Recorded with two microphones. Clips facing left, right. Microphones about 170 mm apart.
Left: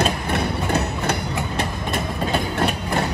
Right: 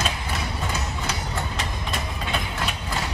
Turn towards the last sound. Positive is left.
turn(degrees=60)  # may be behind; listen again after turning